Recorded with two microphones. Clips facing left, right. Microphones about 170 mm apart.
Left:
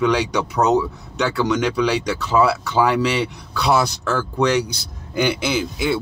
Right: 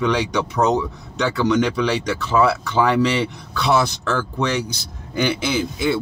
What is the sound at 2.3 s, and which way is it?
Speech, 15° left (ahead or behind).